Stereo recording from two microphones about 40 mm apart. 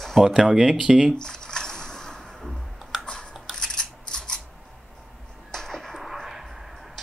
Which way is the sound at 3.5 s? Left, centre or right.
Centre.